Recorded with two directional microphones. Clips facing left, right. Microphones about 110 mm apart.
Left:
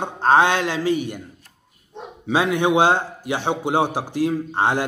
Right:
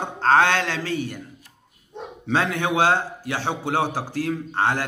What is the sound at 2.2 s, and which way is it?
A man's voice, 15° left (ahead or behind).